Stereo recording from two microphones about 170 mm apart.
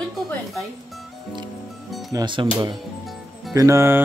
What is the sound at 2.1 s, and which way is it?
Speech, 25° right (ahead or behind).